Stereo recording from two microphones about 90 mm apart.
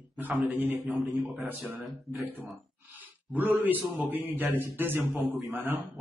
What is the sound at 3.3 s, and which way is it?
A man's voice, 20° right (ahead or behind).